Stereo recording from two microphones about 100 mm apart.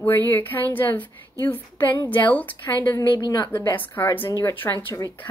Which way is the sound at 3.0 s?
45° left (ahead or behind).